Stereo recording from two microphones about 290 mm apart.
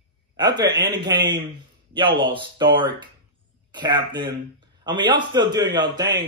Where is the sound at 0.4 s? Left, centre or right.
Centre.